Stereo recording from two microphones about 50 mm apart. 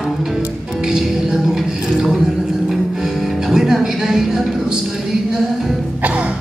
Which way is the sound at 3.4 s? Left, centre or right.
Centre.